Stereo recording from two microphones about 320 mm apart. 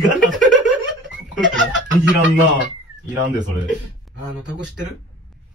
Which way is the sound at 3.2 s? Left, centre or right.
Right.